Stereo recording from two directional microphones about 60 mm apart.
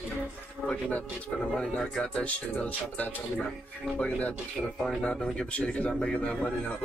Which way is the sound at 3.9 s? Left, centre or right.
Left.